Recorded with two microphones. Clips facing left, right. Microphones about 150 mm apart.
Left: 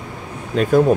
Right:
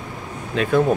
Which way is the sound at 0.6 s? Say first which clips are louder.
Left 4 dB; 40° left (ahead or behind).